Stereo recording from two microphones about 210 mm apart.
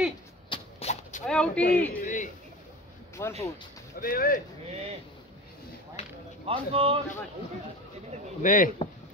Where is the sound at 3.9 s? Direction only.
45° left (ahead or behind).